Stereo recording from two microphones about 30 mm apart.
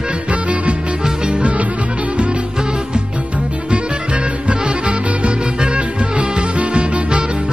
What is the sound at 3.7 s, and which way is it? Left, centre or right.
Music, right.